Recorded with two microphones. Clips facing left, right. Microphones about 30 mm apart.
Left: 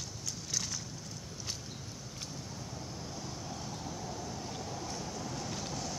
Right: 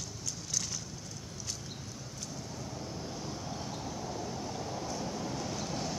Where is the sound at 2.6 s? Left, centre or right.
Centre.